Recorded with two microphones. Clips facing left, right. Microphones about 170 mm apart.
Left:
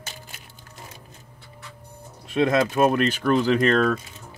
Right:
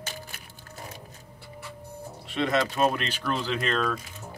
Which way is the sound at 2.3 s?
50° left (ahead or behind).